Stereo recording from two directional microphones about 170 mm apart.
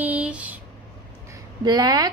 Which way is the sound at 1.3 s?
20° right (ahead or behind).